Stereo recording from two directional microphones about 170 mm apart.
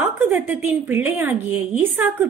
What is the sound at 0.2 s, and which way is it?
A woman's voice, 10° right (ahead or behind).